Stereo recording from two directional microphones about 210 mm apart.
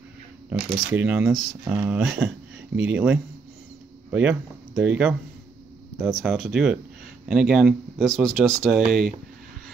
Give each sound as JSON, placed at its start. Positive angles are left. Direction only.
{"t": 0.9, "sound": "speech", "side_deg": -10}